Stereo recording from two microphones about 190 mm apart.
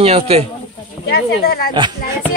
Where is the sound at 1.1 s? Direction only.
55° left (ahead or behind).